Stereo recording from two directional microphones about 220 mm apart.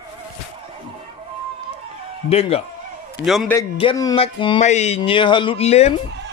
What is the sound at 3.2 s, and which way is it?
Speech, centre (ahead or behind).